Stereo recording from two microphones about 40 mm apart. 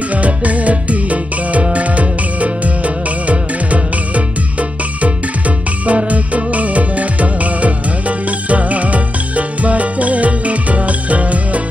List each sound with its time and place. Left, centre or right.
0.1 s music: right